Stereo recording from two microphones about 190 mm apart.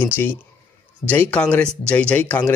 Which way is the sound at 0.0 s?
10° left (ahead or behind).